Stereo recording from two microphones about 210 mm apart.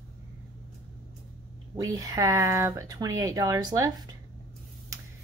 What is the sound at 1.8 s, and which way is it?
A woman's voice, 15° right (ahead or behind).